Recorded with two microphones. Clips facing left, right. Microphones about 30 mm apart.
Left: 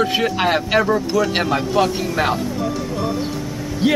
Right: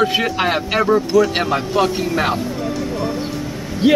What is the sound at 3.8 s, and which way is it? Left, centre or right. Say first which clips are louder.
Speech: right 4 dB; centre.